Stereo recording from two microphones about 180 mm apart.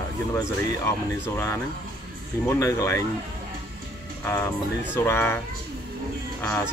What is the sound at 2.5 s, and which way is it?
Speech, 15° left (ahead or behind).